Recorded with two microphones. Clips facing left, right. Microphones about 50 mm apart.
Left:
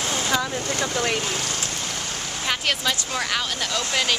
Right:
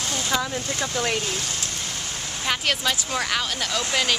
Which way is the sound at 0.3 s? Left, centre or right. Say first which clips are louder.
Even; centre.